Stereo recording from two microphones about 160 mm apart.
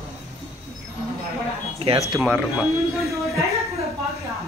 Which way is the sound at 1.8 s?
35° right (ahead or behind).